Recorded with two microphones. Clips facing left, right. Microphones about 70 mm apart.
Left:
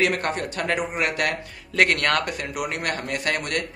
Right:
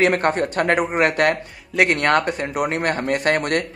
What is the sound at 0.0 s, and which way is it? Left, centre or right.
Speech, right.